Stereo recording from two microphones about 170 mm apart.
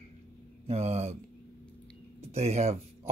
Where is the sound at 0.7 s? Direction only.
40° right (ahead or behind).